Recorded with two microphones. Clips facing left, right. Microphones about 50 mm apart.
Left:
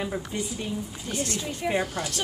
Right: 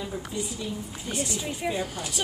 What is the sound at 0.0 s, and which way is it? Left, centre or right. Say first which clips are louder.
Speech: left 2 dB; left.